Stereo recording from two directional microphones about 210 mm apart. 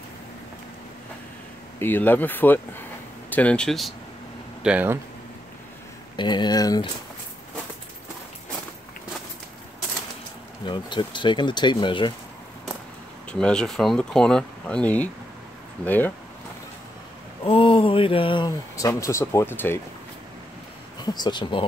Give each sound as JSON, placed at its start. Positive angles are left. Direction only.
{"t": 1.8, "sound": "speech", "side_deg": 10}
{"t": 6.1, "sound": "speech", "side_deg": 20}
{"t": 10.6, "sound": "speech", "side_deg": 25}
{"t": 13.3, "sound": "speech", "side_deg": 5}
{"t": 17.5, "sound": "speech", "side_deg": 25}
{"t": 21.0, "sound": "speech", "side_deg": 20}